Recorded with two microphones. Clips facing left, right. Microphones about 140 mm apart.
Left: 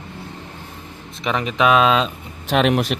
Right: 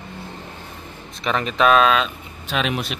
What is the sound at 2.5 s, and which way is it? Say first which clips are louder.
Speech: left 7 dB; 65° left (ahead or behind).